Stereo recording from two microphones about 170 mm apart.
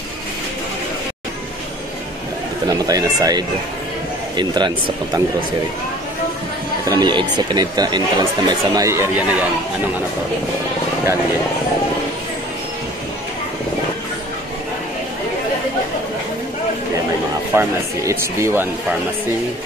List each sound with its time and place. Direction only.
2.6 s speech: 20° right (ahead or behind)
6.8 s speech: 20° right (ahead or behind)
17.6 s speech: 15° right (ahead or behind)